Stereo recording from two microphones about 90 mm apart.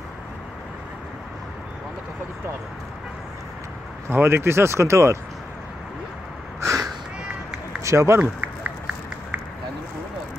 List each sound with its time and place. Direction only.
4.1 s speech: 25° right (ahead or behind)
6.6 s a sound: 35° right (ahead or behind)
7.8 s speech: 35° right (ahead or behind)
8.2 s run: 20° right (ahead or behind)